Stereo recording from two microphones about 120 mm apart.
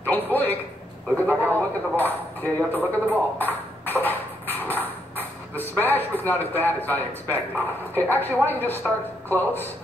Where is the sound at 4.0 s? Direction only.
15° left (ahead or behind).